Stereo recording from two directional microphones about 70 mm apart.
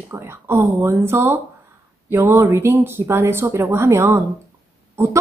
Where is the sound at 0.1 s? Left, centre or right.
Right.